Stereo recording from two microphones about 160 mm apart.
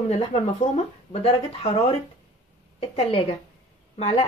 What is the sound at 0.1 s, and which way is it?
Speech, 40° left (ahead or behind).